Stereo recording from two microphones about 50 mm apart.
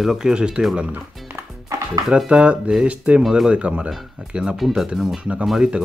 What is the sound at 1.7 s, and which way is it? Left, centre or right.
Music, right.